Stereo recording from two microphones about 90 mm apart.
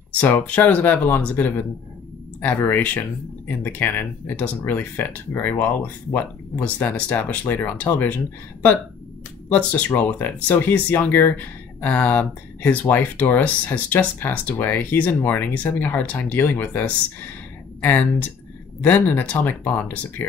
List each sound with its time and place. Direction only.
0.2 s speech: 20° left (ahead or behind)
9.5 s speech: 15° left (ahead or behind)
18.8 s speech: 20° left (ahead or behind)